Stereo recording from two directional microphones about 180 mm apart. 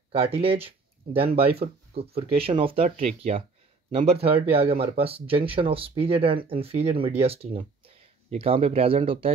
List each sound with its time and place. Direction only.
0.1 s speech: 30° right (ahead or behind)